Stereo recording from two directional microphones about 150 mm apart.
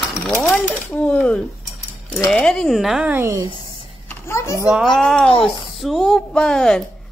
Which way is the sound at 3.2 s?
20° right (ahead or behind).